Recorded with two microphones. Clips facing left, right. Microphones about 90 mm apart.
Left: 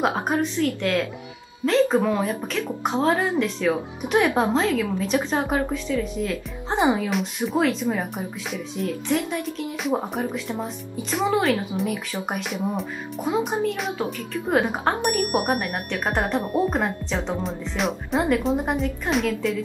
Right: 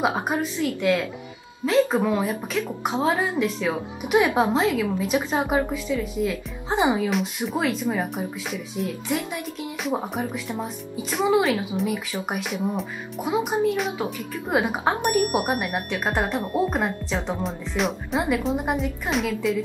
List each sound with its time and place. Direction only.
0.3 s speech: 10° right (ahead or behind)
2.0 s speech: 5° right (ahead or behind)
13.3 s speech: 15° right (ahead or behind)
16.2 s a woman's voice: 10° left (ahead or behind)
16.7 s speech: centre (ahead or behind)